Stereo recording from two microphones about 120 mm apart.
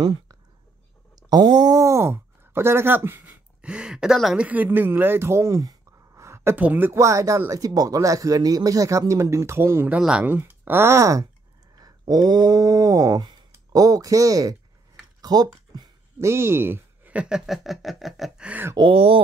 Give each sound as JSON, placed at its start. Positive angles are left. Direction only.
{"t": 1.3, "sound": "speech", "side_deg": -35}
{"t": 16.2, "sound": "speech", "side_deg": -20}
{"t": 18.5, "sound": "speech", "side_deg": -20}
{"t": 18.8, "sound": "speech", "side_deg": -50}